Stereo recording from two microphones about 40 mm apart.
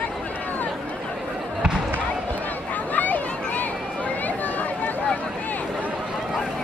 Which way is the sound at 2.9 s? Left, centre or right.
Left.